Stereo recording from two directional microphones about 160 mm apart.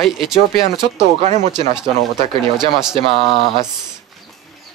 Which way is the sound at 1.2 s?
50° right (ahead or behind).